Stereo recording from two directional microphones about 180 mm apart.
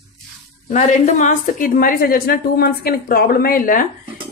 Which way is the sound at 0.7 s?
40° left (ahead or behind).